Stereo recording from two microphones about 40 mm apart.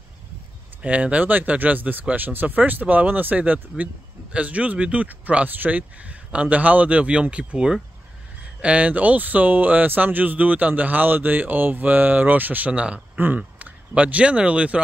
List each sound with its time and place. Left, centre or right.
0.8 s speech: right
7.5 s speech: centre
8.5 s speech: right
12.7 s speech: right